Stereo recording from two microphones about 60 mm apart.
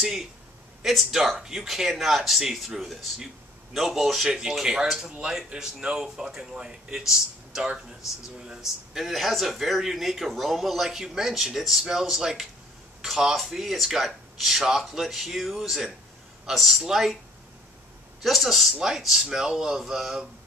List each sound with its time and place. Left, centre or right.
0.0 s a man's voice: centre
18.2 s a man's voice: centre